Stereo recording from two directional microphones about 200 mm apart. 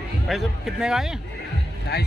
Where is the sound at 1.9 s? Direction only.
55° left (ahead or behind).